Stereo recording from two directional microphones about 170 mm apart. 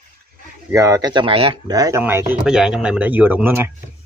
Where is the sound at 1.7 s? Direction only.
20° right (ahead or behind).